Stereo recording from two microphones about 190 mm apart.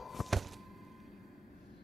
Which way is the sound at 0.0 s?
Centre (ahead or behind).